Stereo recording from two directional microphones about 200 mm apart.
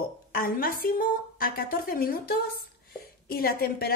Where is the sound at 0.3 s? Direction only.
45° left (ahead or behind).